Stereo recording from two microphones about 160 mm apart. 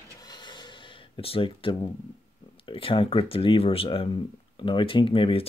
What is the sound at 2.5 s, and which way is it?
Speech, 35° left (ahead or behind).